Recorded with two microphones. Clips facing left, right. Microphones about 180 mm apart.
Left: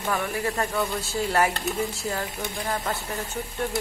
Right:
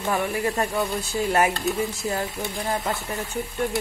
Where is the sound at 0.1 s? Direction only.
20° right (ahead or behind).